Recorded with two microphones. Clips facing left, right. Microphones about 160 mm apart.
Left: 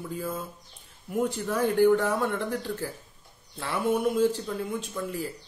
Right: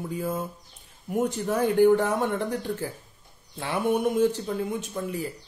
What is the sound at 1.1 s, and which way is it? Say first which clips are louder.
A man's voice: right 2 dB; 20° right (ahead or behind).